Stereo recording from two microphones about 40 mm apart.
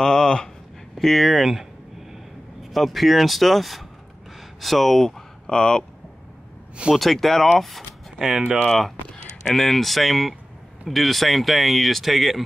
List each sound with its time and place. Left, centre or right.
0.0 s a sound: centre
0.9 s speech: centre
2.7 s speech: centre
5.5 s speech: centre
7.0 s speech: centre
8.2 s speech: centre
8.6 s speech: centre